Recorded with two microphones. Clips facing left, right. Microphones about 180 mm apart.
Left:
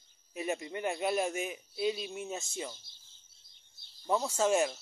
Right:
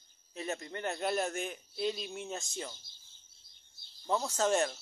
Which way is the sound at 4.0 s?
10° left (ahead or behind).